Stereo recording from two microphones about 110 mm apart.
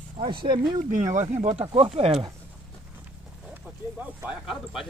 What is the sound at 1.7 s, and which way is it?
Speech, 60° right (ahead or behind).